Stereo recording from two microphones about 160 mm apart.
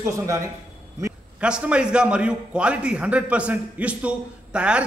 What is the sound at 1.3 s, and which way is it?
A man's voice, 5° right (ahead or behind).